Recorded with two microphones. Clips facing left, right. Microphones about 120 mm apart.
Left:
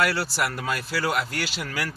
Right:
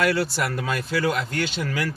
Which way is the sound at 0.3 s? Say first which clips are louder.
Right 1 dB; 5° left (ahead or behind).